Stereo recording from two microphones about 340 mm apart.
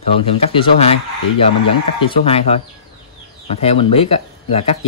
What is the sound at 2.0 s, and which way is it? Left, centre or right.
Speech, centre.